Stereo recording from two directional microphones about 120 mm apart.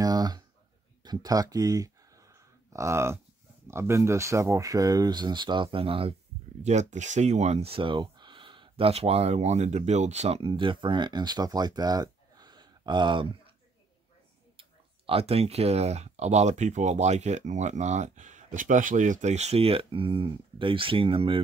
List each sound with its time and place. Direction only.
0.0 s a sound: 30° right (ahead or behind)
3.6 s speech: 20° right (ahead or behind); by 6.1 s 50° right (ahead or behind)
6.6 s speech: 75° right (ahead or behind); by 13.3 s 40° right (ahead or behind)
15.0 s speech: 55° right (ahead or behind)